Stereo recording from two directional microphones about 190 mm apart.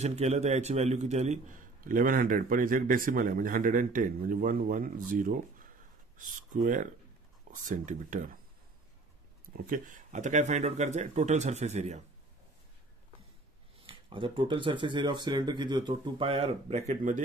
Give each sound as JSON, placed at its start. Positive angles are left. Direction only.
{"t": 0.0, "sound": "a man's voice", "side_deg": -35}
{"t": 9.7, "sound": "speech", "side_deg": -40}
{"t": 13.8, "sound": "speech", "side_deg": -25}